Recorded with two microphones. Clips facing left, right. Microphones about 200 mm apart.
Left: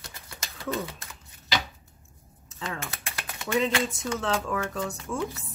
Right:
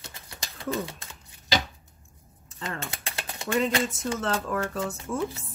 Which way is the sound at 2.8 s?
30° right (ahead or behind).